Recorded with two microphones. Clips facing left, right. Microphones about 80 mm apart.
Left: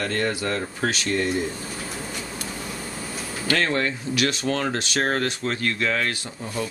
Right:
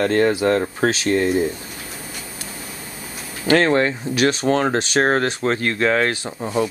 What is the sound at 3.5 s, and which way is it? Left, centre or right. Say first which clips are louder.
Speech: right 8 dB; right.